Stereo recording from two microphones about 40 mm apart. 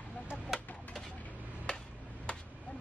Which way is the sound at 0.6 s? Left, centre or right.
Left.